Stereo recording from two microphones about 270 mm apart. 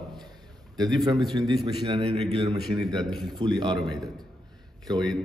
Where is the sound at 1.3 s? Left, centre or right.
Centre.